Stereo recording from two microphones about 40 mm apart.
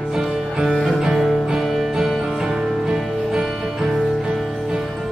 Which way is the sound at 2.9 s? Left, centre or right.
Centre.